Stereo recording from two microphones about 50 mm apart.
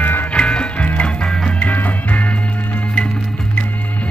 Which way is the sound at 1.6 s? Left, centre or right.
Left.